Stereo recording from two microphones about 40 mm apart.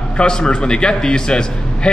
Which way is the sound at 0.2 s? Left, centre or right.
Left.